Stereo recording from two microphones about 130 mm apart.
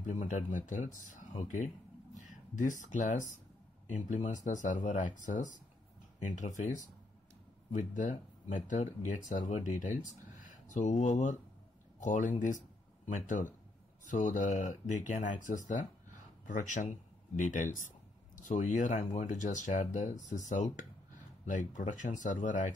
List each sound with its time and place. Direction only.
0.0 s speech: 70° left (ahead or behind)